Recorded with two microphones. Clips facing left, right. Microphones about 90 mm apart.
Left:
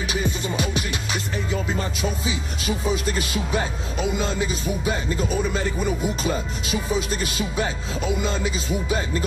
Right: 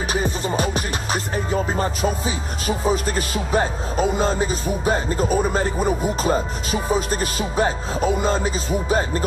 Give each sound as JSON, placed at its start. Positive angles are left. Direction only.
{"t": 0.1, "sound": "music", "side_deg": -40}